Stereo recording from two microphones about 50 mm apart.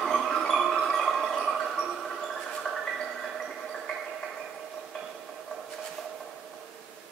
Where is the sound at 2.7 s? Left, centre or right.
Centre.